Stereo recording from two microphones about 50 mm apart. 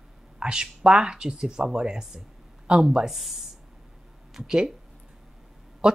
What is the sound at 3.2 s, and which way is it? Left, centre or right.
A woman's voice, centre.